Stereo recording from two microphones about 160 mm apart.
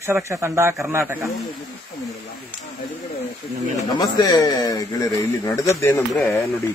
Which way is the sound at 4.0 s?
25° left (ahead or behind).